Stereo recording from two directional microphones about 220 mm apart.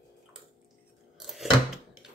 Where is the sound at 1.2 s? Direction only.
Centre (ahead or behind).